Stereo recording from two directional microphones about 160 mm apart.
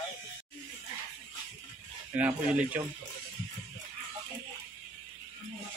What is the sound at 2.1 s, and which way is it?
Speech, 10° right (ahead or behind).